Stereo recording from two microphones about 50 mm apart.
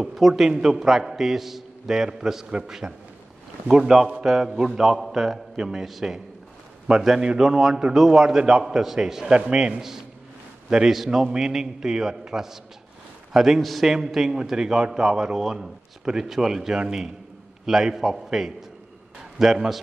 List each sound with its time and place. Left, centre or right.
0.0 s a man's voice: centre
9.8 s a man's voice: centre
13.6 s a man's voice: centre
13.8 s a man's voice: centre